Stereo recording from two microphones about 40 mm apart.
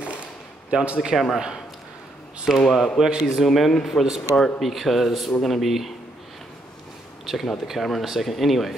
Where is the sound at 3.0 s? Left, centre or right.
Centre.